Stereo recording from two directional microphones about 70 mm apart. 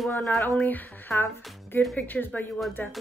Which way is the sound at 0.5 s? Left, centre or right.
Left.